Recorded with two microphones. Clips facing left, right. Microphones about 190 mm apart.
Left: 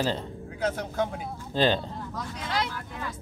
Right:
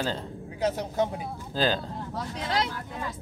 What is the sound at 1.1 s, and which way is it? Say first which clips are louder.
Speech: left 1 dB; centre (ahead or behind).